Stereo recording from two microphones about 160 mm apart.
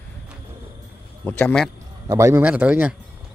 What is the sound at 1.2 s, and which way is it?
Speech, 5° left (ahead or behind).